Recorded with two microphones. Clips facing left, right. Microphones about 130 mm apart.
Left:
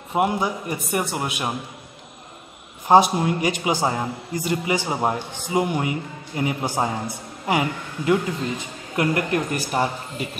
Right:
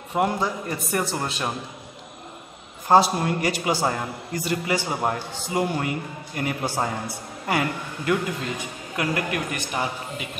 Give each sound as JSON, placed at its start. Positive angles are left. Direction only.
{"t": 0.1, "sound": "a man's voice", "side_deg": 15}
{"t": 2.9, "sound": "a man's voice", "side_deg": 15}
{"t": 9.7, "sound": "a man's voice", "side_deg": 40}